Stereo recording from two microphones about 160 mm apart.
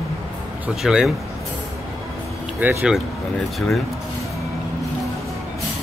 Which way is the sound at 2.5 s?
10° right (ahead or behind).